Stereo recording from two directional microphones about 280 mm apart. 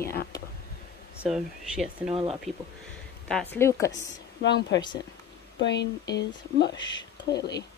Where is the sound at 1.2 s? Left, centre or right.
Centre.